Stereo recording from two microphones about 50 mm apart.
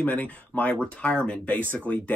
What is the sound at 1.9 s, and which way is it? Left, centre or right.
Speech, left.